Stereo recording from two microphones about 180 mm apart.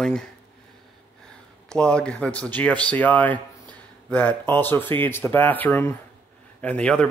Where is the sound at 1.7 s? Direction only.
5° left (ahead or behind).